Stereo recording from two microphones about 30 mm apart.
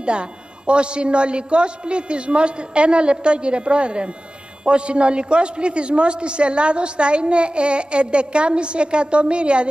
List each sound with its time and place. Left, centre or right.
0.0 s a woman's voice: right